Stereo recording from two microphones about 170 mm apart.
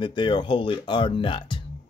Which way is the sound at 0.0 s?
25° left (ahead or behind).